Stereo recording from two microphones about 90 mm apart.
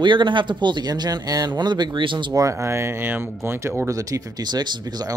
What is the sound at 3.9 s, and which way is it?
Speech, 40° right (ahead or behind).